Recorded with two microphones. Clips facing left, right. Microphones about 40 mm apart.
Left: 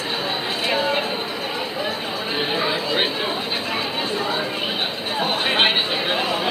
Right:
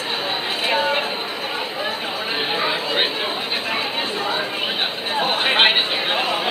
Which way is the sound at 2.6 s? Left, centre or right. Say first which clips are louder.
Right 1 dB; centre.